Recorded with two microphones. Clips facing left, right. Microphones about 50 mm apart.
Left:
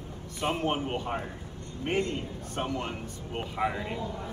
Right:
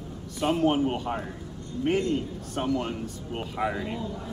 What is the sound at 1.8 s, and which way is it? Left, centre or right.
Speech, left.